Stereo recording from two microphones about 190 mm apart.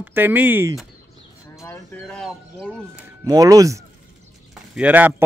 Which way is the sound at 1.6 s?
15° left (ahead or behind).